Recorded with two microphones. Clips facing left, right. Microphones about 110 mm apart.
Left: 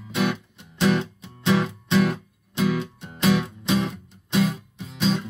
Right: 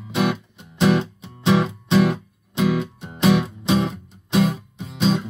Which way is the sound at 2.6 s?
45° right (ahead or behind).